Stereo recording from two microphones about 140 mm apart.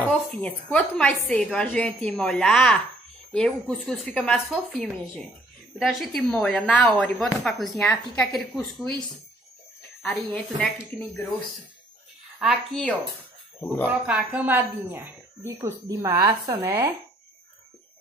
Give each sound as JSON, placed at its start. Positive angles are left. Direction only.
{"t": 0.0, "sound": "a woman's voice", "side_deg": 10}
{"t": 10.0, "sound": "a woman's voice", "side_deg": 5}
{"t": 12.4, "sound": "speech", "side_deg": 0}
{"t": 13.8, "sound": "speech", "side_deg": -10}